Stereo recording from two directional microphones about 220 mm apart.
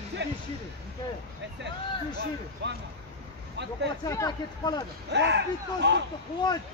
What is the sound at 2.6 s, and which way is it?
Speech, 55° right (ahead or behind).